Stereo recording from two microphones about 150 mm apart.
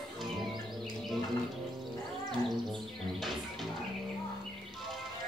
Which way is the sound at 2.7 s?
Centre (ahead or behind).